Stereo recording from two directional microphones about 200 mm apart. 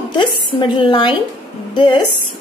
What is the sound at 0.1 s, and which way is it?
A woman's voice, 25° left (ahead or behind).